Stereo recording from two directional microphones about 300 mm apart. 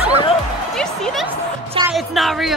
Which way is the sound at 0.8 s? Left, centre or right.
Centre.